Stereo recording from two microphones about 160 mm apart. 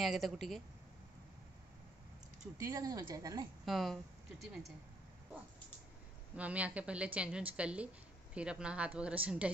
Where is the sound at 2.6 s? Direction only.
20° right (ahead or behind).